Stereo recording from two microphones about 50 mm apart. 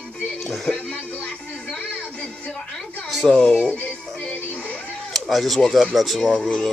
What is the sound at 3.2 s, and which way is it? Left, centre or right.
Speech, centre.